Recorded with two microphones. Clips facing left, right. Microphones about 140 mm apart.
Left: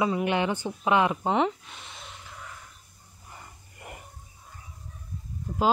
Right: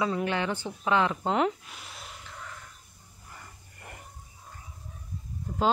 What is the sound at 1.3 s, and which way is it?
Speech, centre (ahead or behind).